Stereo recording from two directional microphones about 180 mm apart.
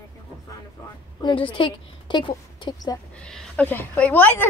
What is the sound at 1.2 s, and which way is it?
A woman's voice, 30° left (ahead or behind).